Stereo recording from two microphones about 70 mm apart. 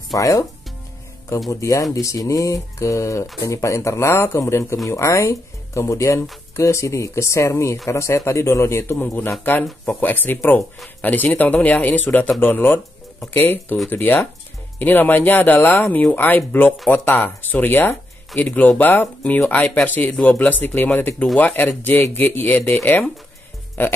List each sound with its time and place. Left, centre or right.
0.1 s speech: left
1.5 s speech: left